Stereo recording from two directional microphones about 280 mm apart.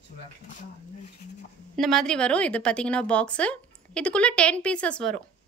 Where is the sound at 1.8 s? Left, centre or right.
Centre.